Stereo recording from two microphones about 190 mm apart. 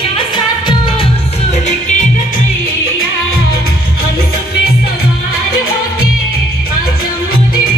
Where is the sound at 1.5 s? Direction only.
40° left (ahead or behind).